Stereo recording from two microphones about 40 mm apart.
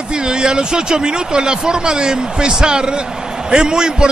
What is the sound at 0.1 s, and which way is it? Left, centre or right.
A man's voice, right.